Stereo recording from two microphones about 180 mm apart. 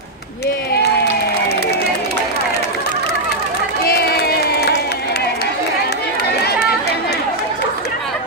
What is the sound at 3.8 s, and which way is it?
Crowd, 60° left (ahead or behind).